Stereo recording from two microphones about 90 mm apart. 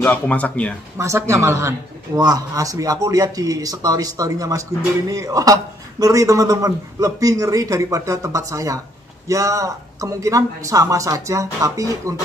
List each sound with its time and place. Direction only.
0.0 s speech: 15° left (ahead or behind)
0.9 s a man's voice: 35° right (ahead or behind)